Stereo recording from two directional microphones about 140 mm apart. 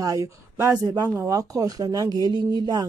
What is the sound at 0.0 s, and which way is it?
Speech, 25° right (ahead or behind).